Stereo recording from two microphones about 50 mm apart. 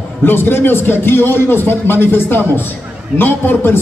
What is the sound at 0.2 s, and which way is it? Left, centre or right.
A man's voice, left.